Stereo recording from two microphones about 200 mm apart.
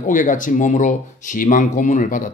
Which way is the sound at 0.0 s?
40° left (ahead or behind).